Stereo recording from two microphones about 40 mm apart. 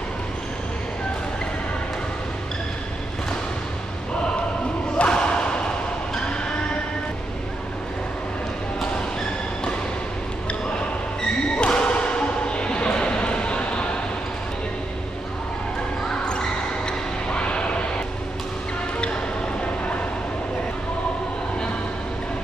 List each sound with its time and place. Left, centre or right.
4.9 s slam: left
11.5 s basketball bounce: left
16.1 s basketball bounce: left